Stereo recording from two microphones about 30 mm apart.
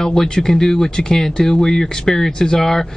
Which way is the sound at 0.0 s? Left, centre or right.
Centre.